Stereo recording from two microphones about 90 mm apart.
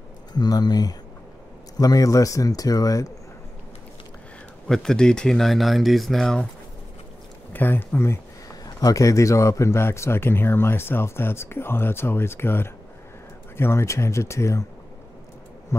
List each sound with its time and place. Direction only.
0.3 s speech: 50° left (ahead or behind)
4.6 s speech: 5° left (ahead or behind)
7.5 s speech: 20° left (ahead or behind)